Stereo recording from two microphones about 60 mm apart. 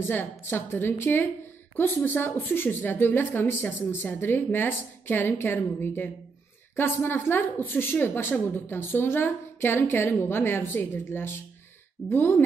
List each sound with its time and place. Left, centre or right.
0.1 s a woman's voice: left
9.8 s a woman's voice: left